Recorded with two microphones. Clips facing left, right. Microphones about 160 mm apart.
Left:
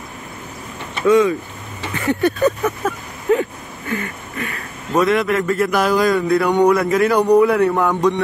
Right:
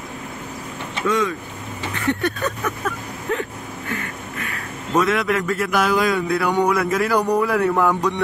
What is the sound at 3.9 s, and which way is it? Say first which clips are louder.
A man's voice: left 7 dB; centre (ahead or behind).